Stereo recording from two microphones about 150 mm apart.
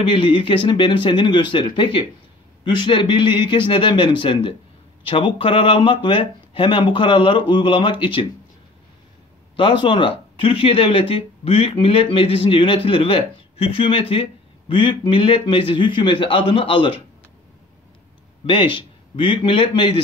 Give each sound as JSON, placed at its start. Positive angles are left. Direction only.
{"t": 0.0, "sound": "speech", "side_deg": 35}
{"t": 9.6, "sound": "speech", "side_deg": 35}
{"t": 18.4, "sound": "a man's voice", "side_deg": 35}